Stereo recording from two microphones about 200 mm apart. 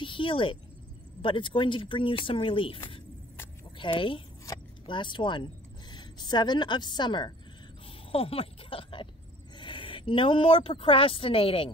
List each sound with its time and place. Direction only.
0.0 s speech: 25° left (ahead or behind)